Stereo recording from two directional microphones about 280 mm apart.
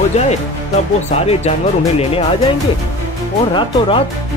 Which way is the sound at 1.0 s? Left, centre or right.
Left.